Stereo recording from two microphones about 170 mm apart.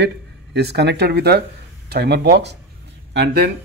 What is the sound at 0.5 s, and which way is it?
Speech, 75° right (ahead or behind).